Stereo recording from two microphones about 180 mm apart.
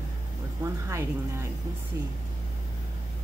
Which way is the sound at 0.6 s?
15° right (ahead or behind).